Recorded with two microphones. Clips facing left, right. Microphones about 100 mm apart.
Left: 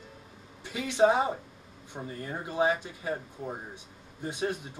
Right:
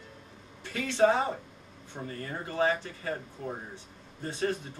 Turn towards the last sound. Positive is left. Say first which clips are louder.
# right 1 dB
turn(degrees=15)  # may be behind; listen again after turning